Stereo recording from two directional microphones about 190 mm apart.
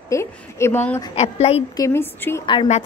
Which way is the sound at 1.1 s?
35° left (ahead or behind).